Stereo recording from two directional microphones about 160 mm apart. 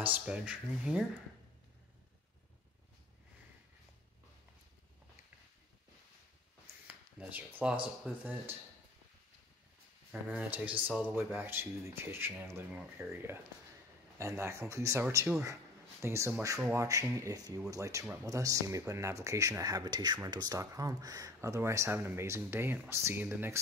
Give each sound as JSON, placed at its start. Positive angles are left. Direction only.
{"t": 0.0, "sound": "speech", "side_deg": -10}
{"t": 6.9, "sound": "a sound", "side_deg": -10}
{"t": 7.8, "sound": "speech", "side_deg": -10}
{"t": 10.2, "sound": "speech", "side_deg": -10}
{"t": 14.1, "sound": "speech", "side_deg": -15}